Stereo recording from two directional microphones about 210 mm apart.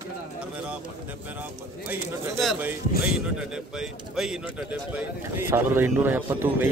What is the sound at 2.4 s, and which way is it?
Speech, centre (ahead or behind).